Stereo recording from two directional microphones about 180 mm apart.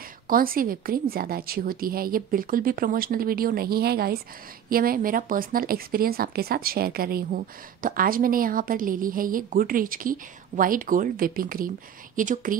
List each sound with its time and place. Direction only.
0.3 s a woman's voice: 50° right (ahead or behind)